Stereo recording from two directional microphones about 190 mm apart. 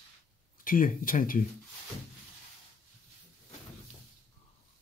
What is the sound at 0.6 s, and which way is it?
Speech, 45° left (ahead or behind).